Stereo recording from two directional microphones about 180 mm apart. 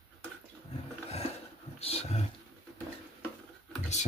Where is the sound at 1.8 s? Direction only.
35° left (ahead or behind).